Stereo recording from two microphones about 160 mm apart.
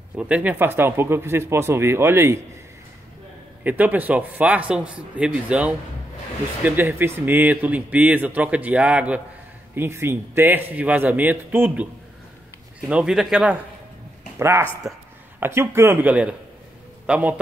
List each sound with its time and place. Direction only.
0.1 s speech: 10° right (ahead or behind)
3.6 s speech: 10° right (ahead or behind)
14.4 s a man's voice: 15° right (ahead or behind)